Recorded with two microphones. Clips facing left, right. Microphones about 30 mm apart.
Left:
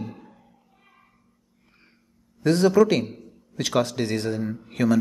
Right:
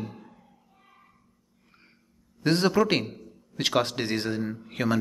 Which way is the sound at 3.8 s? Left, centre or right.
Right.